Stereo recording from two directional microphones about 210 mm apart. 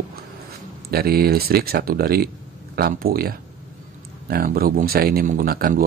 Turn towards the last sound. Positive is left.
turn(degrees=-45)  # may be behind; listen again after turning